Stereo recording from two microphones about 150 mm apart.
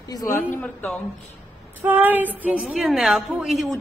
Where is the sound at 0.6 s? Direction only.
10° left (ahead or behind).